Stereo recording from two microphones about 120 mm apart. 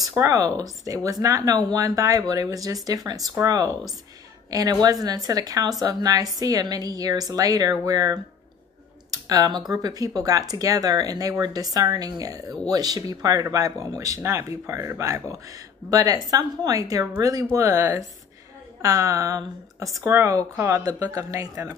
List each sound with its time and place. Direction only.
0.1 s a woman's voice: 25° right (ahead or behind)